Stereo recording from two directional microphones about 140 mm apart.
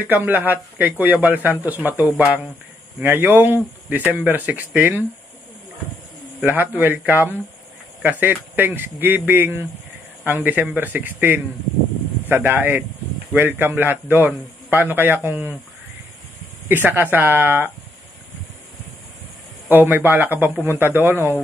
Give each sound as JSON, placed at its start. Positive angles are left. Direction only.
{"t": 0.0, "sound": "a man's voice", "side_deg": -15}
{"t": 6.4, "sound": "a man's voice", "side_deg": -15}
{"t": 16.6, "sound": "a man's voice", "side_deg": -15}
{"t": 19.7, "sound": "a man's voice", "side_deg": -15}